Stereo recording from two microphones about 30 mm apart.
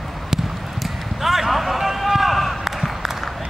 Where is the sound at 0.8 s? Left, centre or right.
Centre.